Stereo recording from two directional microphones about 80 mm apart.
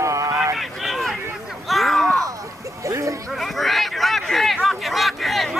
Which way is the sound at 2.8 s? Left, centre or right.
Right.